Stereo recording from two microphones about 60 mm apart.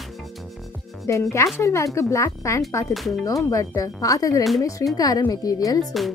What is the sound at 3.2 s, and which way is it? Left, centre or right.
Speech, left.